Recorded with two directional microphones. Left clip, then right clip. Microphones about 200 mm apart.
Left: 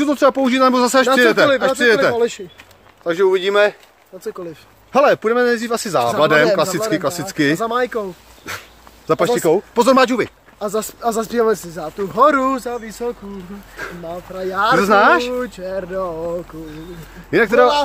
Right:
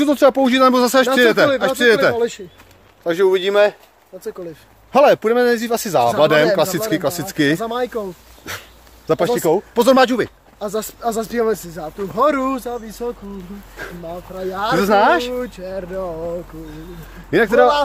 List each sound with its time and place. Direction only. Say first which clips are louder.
0.0 s a man's voice: right 1 dB; 15° right (ahead or behind)
2.1 s speech: left 2 dB; 10° left (ahead or behind)
3.0 s a man's voice: even; 15° right (ahead or behind)
4.1 s speech: left 1 dB; 15° left (ahead or behind)
4.9 s a man's voice: right 1 dB; 15° right (ahead or behind)
7.6 s speech: left 3 dB; 10° left (ahead or behind)
8.5 s speech: left 1 dB; 5° right (ahead or behind)
10.6 s speech: left 2 dB; 15° left (ahead or behind)
14.8 s a man's voice: even; 5° right (ahead or behind)
15.3 s speech: left 2 dB; 15° left (ahead or behind)
17.3 s a man's voice: even; 5° right (ahead or behind)